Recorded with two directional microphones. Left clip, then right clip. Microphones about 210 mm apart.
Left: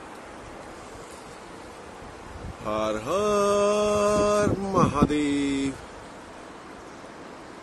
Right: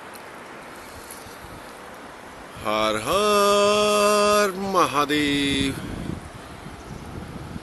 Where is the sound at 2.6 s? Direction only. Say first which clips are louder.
Right 5 dB; 5° right (ahead or behind).